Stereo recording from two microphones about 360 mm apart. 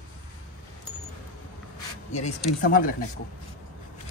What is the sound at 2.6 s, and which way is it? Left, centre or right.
Speech, left.